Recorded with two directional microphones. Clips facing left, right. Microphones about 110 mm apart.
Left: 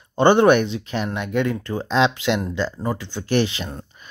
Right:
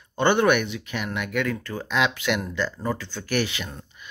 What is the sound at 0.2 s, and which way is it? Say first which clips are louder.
Speech: left 6 dB; 30° left (ahead or behind).